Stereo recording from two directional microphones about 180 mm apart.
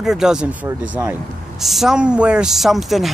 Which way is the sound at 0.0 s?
5° right (ahead or behind).